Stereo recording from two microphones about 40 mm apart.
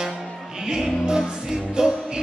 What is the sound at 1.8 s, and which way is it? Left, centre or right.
Music, centre.